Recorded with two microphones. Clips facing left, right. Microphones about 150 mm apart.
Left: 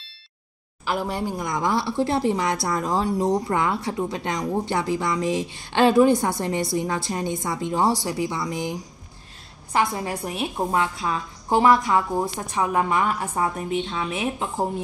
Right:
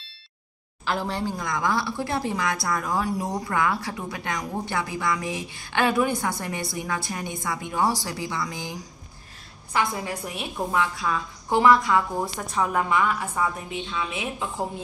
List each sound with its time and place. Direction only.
0.8 s speech: 10° left (ahead or behind)
9.7 s speech: 35° left (ahead or behind)
12.9 s a woman's voice: 35° left (ahead or behind)